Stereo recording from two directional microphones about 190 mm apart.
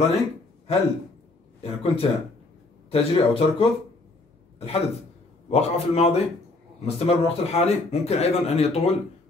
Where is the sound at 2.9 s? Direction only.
30° left (ahead or behind).